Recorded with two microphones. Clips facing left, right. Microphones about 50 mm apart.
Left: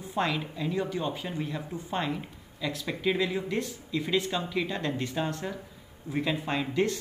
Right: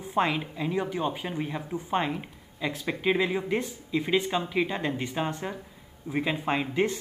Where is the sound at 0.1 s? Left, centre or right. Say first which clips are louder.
Right 3 dB; right.